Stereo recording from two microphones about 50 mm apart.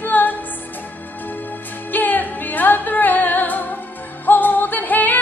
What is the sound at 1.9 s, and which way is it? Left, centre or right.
Music, left.